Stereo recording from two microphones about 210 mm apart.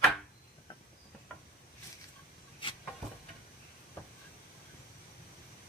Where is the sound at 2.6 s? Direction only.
25° left (ahead or behind).